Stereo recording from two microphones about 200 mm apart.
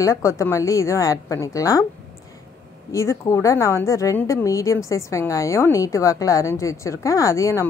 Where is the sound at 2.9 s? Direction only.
15° left (ahead or behind).